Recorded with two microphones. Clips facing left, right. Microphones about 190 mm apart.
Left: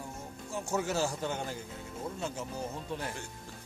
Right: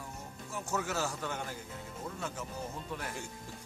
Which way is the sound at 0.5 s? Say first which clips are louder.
Left 3 dB; 30° left (ahead or behind).